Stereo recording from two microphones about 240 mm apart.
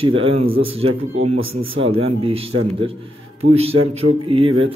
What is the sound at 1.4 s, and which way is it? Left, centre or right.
Speech, right.